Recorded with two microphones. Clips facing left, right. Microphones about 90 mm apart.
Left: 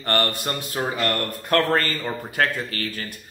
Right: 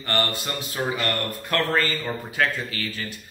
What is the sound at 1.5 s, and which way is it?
Speech, 50° left (ahead or behind).